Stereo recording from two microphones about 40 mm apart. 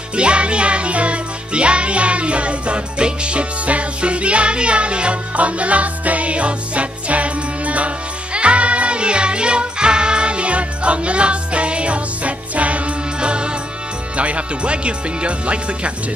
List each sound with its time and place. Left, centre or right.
0.1 s music: right
14.1 s speech: right